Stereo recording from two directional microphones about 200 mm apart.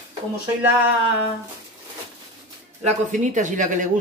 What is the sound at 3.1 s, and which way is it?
Speech, 40° right (ahead or behind).